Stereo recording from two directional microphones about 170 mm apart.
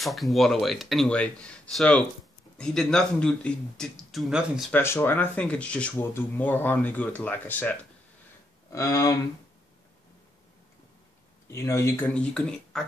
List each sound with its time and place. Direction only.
0.0 s speech: centre (ahead or behind)
4.7 s speech: 15° left (ahead or behind)
8.7 s speech: 20° left (ahead or behind)
11.5 s speech: 15° left (ahead or behind)
12.1 s speech: 5° left (ahead or behind)